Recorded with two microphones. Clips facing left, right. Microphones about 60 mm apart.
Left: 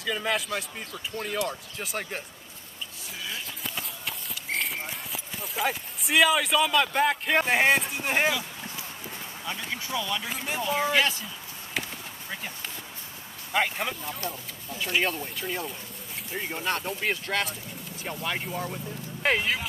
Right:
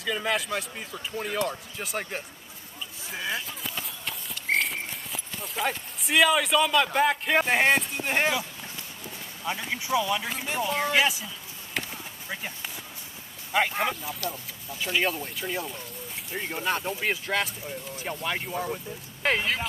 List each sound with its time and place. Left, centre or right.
0.0 s speech: centre
3.6 s clip-clop: centre
9.5 s speech: centre
10.2 s speech: centre
11.7 s clip-clop: centre
13.5 s speech: centre